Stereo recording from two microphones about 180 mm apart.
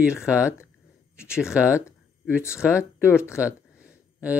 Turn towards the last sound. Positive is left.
turn(degrees=-5)  # may be behind; listen again after turning